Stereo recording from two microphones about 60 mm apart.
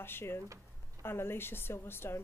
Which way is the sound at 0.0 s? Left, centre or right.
Left.